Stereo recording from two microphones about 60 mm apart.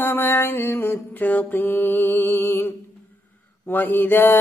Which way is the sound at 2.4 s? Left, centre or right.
Left.